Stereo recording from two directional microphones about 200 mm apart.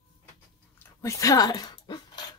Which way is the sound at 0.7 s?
15° left (ahead or behind).